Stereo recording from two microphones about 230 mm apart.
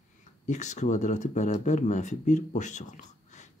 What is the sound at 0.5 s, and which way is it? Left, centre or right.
Speech, left.